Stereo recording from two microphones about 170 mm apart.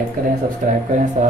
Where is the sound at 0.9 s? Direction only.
45° right (ahead or behind).